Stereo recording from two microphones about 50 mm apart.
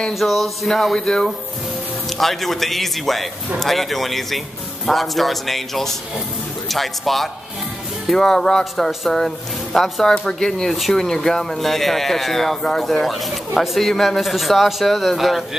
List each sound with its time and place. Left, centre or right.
0.1 s speech: centre
0.9 s speech: centre
2.0 s speech: centre
8.2 s speech: centre